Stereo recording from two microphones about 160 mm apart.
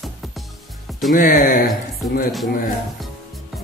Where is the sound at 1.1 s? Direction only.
60° left (ahead or behind).